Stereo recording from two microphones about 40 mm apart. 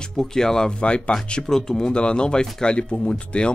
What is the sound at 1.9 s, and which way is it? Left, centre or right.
Speech, left.